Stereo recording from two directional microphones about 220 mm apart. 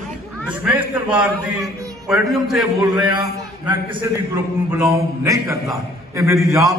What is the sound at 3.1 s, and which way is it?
A man's voice, 20° right (ahead or behind).